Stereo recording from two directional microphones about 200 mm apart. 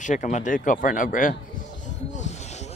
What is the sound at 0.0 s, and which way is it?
Speech, 35° left (ahead or behind).